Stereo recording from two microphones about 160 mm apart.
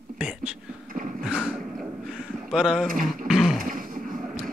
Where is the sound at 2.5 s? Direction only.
5° right (ahead or behind).